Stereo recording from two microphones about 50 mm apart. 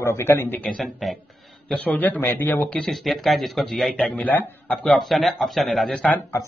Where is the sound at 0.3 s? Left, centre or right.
Left.